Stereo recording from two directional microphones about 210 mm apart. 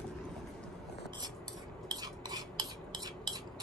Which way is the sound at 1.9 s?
20° right (ahead or behind).